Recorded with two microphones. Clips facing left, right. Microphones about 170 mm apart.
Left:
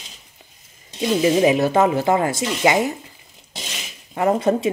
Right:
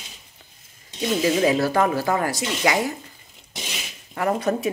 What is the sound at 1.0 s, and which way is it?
A woman's voice, 20° left (ahead or behind).